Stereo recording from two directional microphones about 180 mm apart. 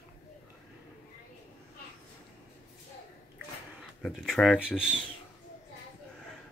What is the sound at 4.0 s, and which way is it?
Speech, centre (ahead or behind).